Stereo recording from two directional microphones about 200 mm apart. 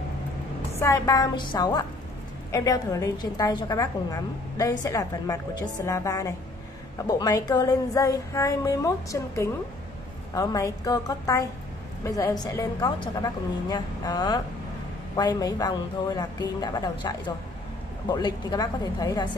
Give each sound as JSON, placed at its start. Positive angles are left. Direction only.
{"t": 0.7, "sound": "a woman's voice", "side_deg": 15}